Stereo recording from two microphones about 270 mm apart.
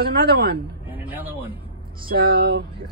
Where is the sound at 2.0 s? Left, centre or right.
Right.